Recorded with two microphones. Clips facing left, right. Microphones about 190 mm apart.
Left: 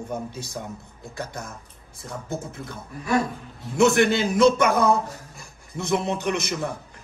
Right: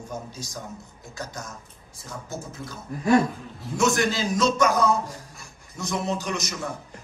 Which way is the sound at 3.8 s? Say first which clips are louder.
Left 5 dB; 60° left (ahead or behind).